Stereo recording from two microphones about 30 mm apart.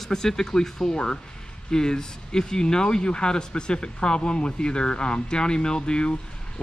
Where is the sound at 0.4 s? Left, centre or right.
Centre.